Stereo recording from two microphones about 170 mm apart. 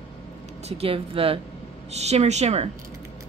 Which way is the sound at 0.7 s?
35° right (ahead or behind).